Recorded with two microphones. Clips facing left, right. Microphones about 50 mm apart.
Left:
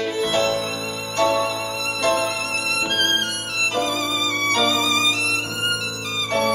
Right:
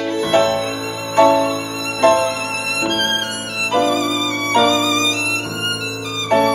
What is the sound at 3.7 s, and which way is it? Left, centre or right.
Violin, centre.